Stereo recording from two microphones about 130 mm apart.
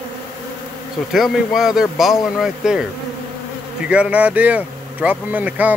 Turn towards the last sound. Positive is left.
turn(degrees=-10)  # may be behind; listen again after turning